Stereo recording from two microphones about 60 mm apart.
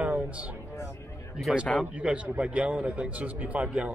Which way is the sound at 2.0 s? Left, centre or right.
Right.